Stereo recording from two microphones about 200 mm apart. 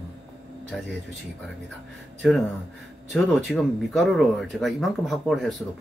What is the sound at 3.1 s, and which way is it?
Speech, centre (ahead or behind).